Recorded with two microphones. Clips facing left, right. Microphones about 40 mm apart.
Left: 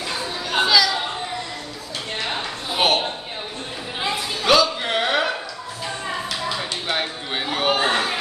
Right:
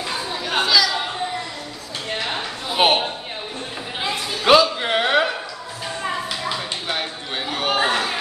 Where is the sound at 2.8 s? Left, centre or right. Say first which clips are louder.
Right 2 dB; right.